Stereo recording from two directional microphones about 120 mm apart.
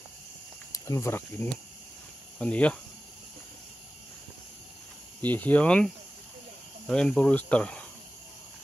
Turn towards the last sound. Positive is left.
turn(degrees=10)  # may be behind; listen again after turning